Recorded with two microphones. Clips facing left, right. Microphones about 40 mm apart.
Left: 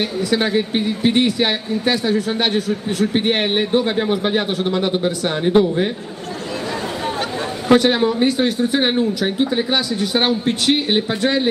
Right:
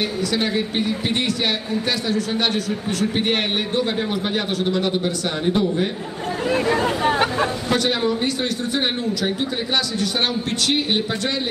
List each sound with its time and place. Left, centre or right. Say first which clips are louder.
0.3 s speech: left 4 dB; centre
7.6 s speech: left 11 dB; left
9.9 s speech: left 4 dB; left